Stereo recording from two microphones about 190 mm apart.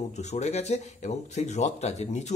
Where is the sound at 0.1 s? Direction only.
35° left (ahead or behind).